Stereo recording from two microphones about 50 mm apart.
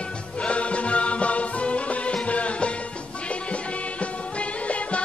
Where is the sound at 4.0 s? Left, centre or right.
Left.